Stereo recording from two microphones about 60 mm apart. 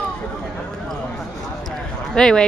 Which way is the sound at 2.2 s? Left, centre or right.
Centre.